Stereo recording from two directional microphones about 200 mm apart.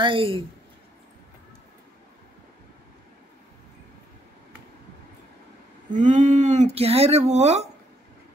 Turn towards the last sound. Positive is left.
turn(degrees=-35)  # may be behind; listen again after turning